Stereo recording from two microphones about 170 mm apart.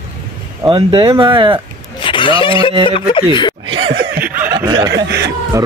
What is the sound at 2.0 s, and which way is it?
Speech, 30° left (ahead or behind).